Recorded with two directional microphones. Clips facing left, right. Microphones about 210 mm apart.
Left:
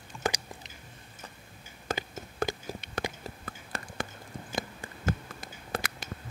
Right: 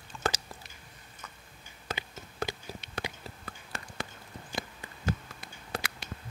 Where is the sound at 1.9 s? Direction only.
50° left (ahead or behind).